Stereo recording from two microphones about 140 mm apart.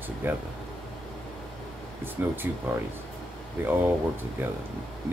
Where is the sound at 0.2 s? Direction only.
15° right (ahead or behind).